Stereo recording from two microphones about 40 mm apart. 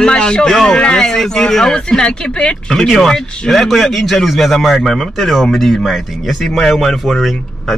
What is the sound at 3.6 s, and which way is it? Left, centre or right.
Speech, centre.